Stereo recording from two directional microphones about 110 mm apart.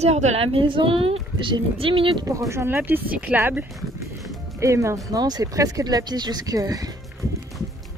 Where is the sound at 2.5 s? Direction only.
25° right (ahead or behind).